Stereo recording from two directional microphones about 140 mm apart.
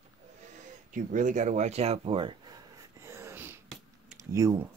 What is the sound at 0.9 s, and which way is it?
Speech, 65° right (ahead or behind).